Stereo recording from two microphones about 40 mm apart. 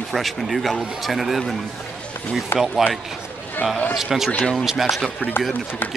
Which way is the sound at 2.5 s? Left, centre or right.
Left.